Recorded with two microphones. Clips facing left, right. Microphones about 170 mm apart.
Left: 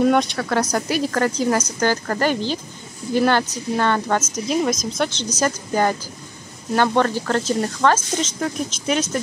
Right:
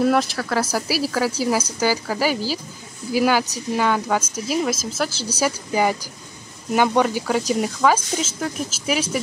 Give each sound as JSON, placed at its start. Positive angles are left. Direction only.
{"t": 0.0, "sound": "speech", "side_deg": 0}
{"t": 7.0, "sound": "speech", "side_deg": -10}